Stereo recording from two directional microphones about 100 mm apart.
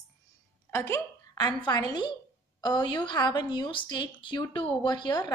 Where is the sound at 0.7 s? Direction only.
25° left (ahead or behind).